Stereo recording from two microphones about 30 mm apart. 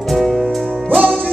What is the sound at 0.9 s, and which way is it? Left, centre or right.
Music, centre.